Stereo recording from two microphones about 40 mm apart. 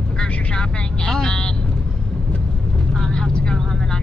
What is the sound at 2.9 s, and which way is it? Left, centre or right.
Vehicle, centre.